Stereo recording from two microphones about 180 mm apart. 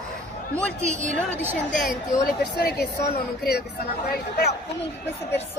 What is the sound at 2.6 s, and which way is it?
Speech, 60° left (ahead or behind).